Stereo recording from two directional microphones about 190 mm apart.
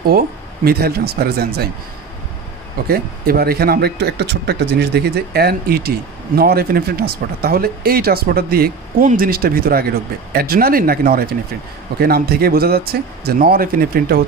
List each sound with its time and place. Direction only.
0.1 s speech: 50° right (ahead or behind)
2.9 s speech: 55° right (ahead or behind)